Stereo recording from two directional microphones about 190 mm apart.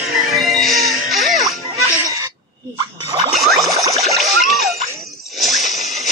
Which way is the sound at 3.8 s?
20° right (ahead or behind).